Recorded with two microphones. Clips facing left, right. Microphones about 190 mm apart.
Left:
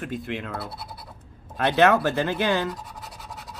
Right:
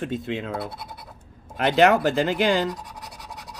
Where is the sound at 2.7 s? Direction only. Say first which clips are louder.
Right 2 dB; centre (ahead or behind).